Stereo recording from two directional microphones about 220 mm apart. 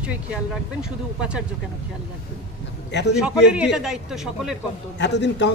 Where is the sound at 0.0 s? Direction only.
5° right (ahead or behind).